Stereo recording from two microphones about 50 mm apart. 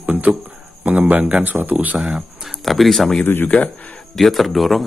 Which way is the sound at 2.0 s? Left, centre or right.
Centre.